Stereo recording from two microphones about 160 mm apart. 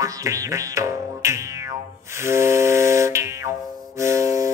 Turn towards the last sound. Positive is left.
turn(degrees=-20)  # may be behind; listen again after turning